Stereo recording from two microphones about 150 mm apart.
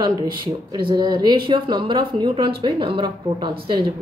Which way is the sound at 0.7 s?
30° right (ahead or behind).